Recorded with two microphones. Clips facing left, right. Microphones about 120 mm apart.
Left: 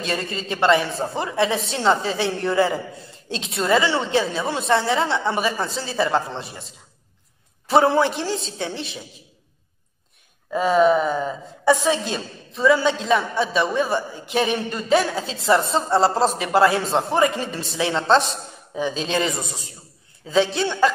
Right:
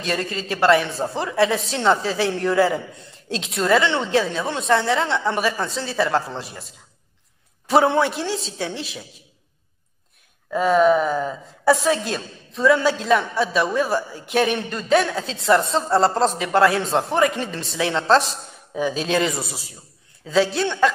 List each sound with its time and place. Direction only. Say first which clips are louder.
0.0 s a woman's voice: right 1 dB; centre (ahead or behind)
7.6 s a woman's voice: even; centre (ahead or behind)
10.5 s a woman's voice: right 1 dB; centre (ahead or behind)